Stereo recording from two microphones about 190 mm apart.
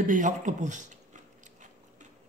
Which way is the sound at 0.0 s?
40° right (ahead or behind).